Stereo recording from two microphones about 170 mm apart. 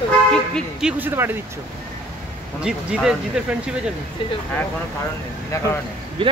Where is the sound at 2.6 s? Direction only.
5° right (ahead or behind).